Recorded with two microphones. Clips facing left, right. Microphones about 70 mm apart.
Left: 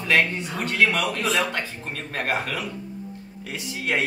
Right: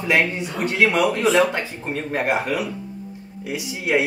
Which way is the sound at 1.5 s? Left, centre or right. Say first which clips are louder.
Right 4 dB; centre.